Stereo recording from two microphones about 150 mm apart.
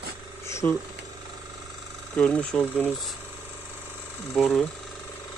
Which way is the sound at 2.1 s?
5° left (ahead or behind).